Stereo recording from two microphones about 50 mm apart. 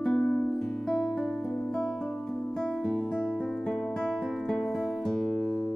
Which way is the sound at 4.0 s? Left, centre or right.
Centre.